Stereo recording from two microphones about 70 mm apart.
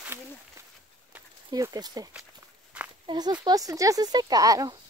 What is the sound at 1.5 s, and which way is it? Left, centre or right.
Speech, right.